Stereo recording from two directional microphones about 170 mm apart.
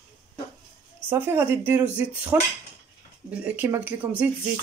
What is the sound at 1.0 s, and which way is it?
A woman's voice, 15° right (ahead or behind).